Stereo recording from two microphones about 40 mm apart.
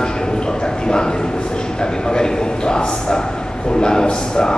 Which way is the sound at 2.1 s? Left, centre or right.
Centre.